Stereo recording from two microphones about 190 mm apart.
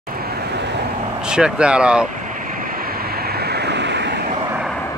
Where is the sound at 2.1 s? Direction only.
45° right (ahead or behind); by 4.3 s 65° right (ahead or behind).